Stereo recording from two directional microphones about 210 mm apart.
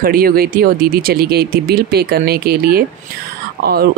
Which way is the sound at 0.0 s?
45° right (ahead or behind).